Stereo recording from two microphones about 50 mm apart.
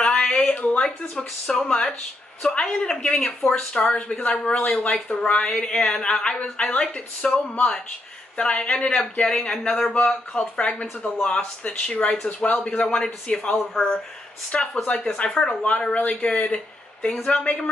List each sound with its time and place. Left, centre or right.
0.0 s a sound: centre
1.1 s speech: centre
4.2 s speech: left
8.4 s speech: left; by 9.9 s centre
10.0 s speech: centre